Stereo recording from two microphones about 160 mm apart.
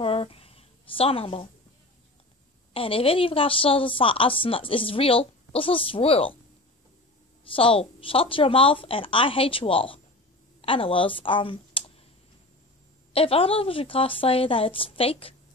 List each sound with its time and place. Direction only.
0.0 s a sound: 35° left (ahead or behind)
2.7 s a woman's voice: 35° left (ahead or behind)
7.5 s a woman's voice: 35° left (ahead or behind)
13.1 s a woman's voice: 35° left (ahead or behind)